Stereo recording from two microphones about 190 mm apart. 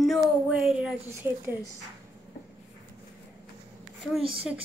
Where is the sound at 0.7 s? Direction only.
10° right (ahead or behind).